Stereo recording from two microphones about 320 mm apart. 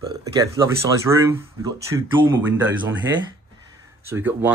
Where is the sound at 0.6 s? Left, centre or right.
Centre.